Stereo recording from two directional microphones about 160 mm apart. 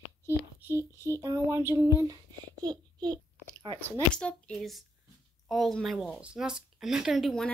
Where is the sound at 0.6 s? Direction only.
15° right (ahead or behind).